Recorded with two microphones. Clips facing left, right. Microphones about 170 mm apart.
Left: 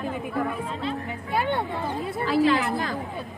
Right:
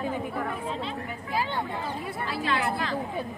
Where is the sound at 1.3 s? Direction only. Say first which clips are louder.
Left 4 dB; 60° left (ahead or behind).